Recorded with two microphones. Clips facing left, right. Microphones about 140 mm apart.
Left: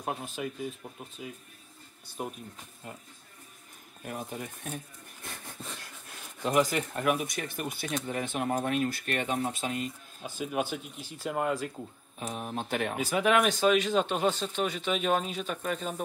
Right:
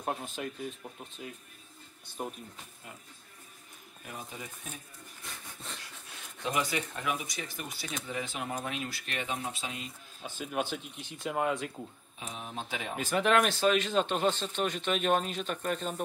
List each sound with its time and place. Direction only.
0.0 s speech: centre (ahead or behind)
4.3 s speech: 55° left (ahead or behind)
5.4 s wheeze: centre (ahead or behind)
6.6 s speech: 50° left (ahead or behind)
10.2 s speech: 5° left (ahead or behind)
12.2 s speech: 50° left (ahead or behind)
12.9 s speech: 5° left (ahead or behind)